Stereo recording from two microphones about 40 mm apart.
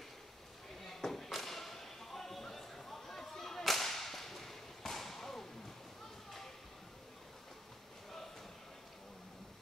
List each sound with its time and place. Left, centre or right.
0.8 s thump: centre